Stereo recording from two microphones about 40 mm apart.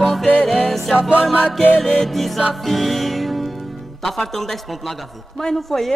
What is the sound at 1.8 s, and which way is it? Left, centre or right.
Speech, centre.